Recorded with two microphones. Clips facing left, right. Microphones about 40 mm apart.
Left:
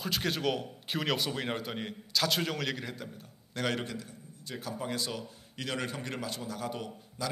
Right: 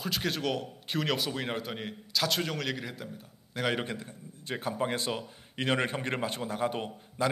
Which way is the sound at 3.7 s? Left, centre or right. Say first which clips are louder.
Right 3 dB; right.